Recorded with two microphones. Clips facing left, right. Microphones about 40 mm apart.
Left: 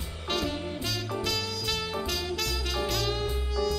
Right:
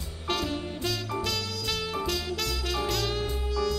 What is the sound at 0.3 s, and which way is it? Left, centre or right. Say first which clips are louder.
Music: right 1 dB; centre.